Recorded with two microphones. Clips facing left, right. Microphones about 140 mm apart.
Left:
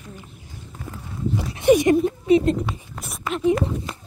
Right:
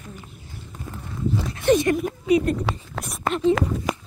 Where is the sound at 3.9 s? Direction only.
90° right.